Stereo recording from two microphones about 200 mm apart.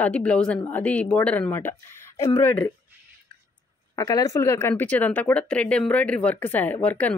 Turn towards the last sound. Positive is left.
turn(degrees=10)  # may be behind; listen again after turning